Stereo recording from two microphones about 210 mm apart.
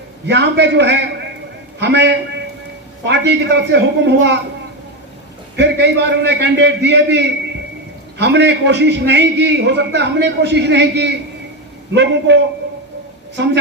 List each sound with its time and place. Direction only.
0.3 s a man's voice: 55° right (ahead or behind)
5.6 s a man's voice: 55° right (ahead or behind)